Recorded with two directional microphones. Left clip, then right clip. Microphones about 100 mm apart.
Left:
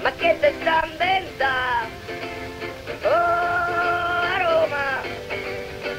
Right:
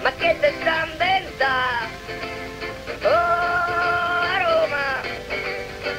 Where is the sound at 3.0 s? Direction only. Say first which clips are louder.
Right 1 dB; 35° left (ahead or behind).